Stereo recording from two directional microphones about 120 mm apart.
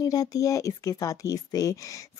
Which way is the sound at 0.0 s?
30° left (ahead or behind).